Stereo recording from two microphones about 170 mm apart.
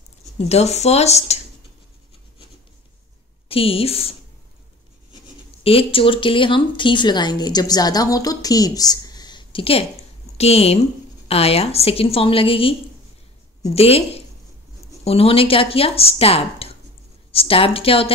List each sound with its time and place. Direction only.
0.4 s speech: 40° left (ahead or behind)
3.4 s speech: 35° left (ahead or behind)
5.6 s speech: 35° left (ahead or behind)
13.7 s speech: 35° left (ahead or behind)